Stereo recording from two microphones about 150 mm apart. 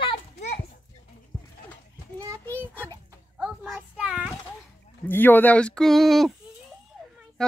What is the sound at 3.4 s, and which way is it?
Child singing, centre (ahead or behind).